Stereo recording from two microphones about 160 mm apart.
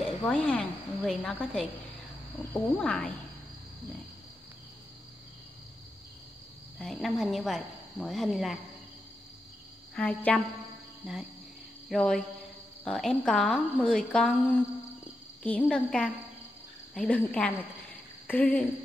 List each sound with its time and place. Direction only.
0.2 s a woman's voice: 10° left (ahead or behind)
6.8 s a woman's voice: centre (ahead or behind)
9.9 s speech: 10° left (ahead or behind)
11.9 s a woman's voice: 5° left (ahead or behind)